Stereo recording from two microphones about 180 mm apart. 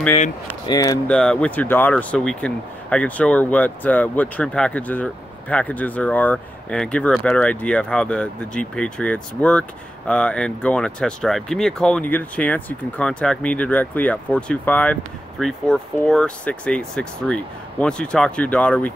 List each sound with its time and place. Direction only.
0.7 s speech: 20° left (ahead or behind)
1.0 s speech: 5° left (ahead or behind)